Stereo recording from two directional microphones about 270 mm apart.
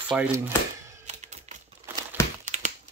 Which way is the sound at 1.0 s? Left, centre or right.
Right.